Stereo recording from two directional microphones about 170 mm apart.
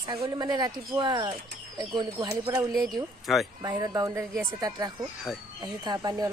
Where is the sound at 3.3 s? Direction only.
Centre (ahead or behind).